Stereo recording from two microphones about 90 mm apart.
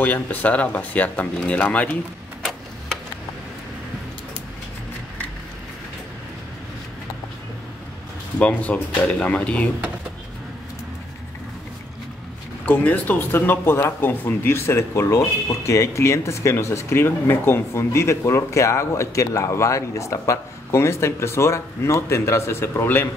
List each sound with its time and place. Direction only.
0.0 s speech: 20° left (ahead or behind)
8.4 s speech: 15° left (ahead or behind)
12.6 s speech: 20° left (ahead or behind)